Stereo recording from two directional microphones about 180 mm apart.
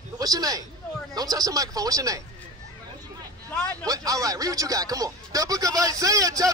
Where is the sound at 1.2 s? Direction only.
20° right (ahead or behind).